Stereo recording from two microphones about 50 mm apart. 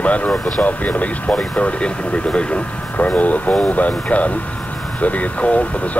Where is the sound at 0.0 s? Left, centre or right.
Left.